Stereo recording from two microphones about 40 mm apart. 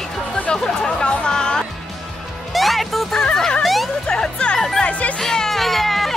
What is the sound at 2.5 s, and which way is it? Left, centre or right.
Music, centre.